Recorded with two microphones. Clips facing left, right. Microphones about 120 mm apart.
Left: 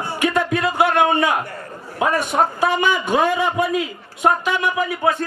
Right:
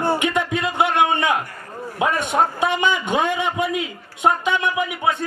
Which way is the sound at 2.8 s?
20° right (ahead or behind).